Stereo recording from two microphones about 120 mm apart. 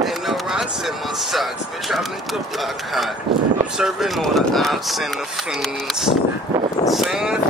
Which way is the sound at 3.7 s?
5° right (ahead or behind).